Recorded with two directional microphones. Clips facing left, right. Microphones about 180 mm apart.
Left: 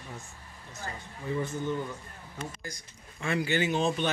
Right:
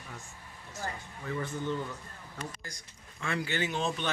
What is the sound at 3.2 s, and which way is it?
Speech, 15° left (ahead or behind).